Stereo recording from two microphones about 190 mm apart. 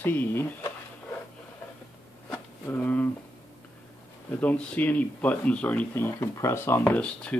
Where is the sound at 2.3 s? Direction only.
10° left (ahead or behind).